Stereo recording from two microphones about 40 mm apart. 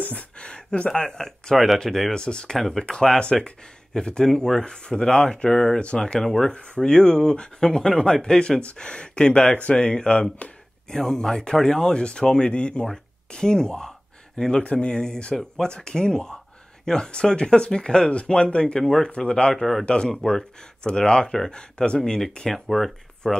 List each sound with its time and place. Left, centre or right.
0.4 s a sound: left
1.1 s speech: centre
2.1 s speech: left
2.5 s speech: centre
6.2 s speech: centre
6.5 s speech: left
12.8 s speech: centre
14.6 s speech: left
15.3 s speech: centre
15.7 s speech: left
19.5 s speech: centre
19.8 s speech: left
22.5 s speech: centre